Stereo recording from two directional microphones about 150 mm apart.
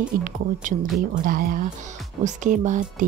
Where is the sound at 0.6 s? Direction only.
65° right (ahead or behind).